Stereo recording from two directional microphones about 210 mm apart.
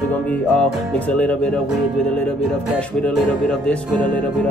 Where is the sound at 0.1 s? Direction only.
5° left (ahead or behind).